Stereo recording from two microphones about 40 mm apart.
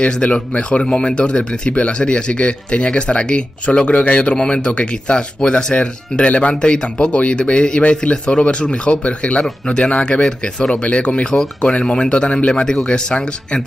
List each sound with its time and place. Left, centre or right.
0.0 s speech: left
6.5 s speech: left
7.2 s speech: left
10.2 s speech: left